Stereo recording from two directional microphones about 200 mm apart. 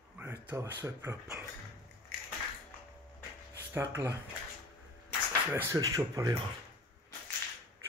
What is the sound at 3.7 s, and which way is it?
Speech, 10° right (ahead or behind).